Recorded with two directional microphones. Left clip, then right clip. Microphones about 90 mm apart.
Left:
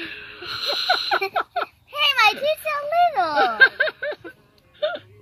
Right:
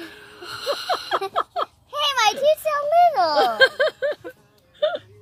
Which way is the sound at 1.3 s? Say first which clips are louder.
Even; 90° right.